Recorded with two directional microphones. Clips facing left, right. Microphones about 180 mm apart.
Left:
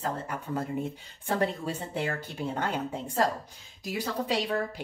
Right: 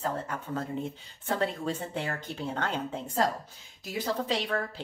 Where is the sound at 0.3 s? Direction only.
10° left (ahead or behind).